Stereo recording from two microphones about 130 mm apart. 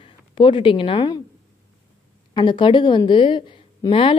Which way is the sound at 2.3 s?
35° left (ahead or behind).